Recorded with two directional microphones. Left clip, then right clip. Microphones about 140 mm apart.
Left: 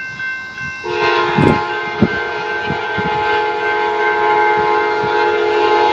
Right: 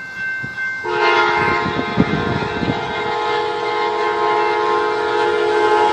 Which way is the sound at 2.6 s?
55° left (ahead or behind).